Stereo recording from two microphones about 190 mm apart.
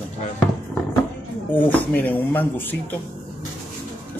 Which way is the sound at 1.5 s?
10° left (ahead or behind).